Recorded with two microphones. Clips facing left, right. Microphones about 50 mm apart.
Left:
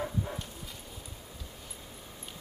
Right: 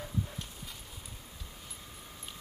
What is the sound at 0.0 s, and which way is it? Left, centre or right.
Dog, left.